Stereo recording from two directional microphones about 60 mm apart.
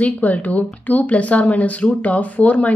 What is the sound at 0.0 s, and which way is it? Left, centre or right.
Speech, left.